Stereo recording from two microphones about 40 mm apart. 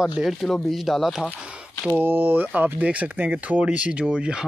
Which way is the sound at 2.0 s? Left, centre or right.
Right.